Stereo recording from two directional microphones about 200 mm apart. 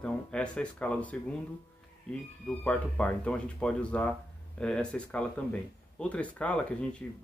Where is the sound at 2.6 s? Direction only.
5° left (ahead or behind).